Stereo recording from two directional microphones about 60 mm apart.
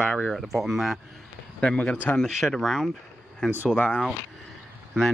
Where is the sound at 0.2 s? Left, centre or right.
Centre.